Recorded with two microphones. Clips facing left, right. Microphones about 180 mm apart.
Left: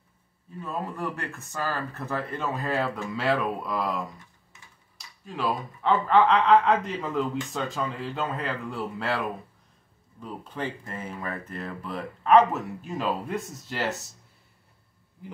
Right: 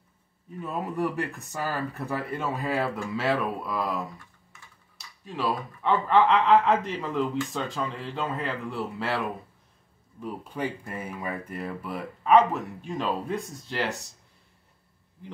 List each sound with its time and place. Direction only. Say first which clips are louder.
0.6 s speech: right 3 dB; 15° right (ahead or behind)
4.9 s speech: right 1 dB; centre (ahead or behind)
10.2 s speech: right 2 dB; 10° right (ahead or behind)